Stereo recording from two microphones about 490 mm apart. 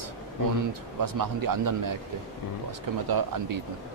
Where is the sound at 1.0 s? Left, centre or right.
Right.